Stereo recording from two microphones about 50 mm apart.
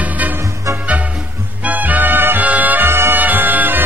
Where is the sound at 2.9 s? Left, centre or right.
Right.